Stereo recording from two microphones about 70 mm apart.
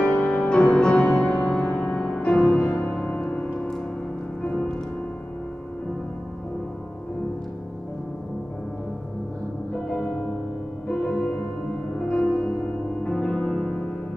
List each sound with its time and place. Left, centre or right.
0.0 s music: centre
3.1 s music: left
9.8 s music: centre
10.9 s music: centre